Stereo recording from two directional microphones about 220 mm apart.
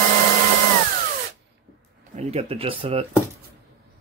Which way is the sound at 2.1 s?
25° right (ahead or behind).